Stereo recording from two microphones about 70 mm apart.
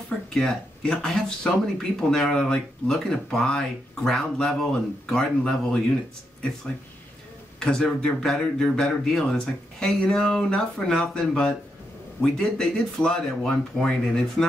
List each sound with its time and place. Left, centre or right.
0.3 s speech: centre
7.6 s speech: centre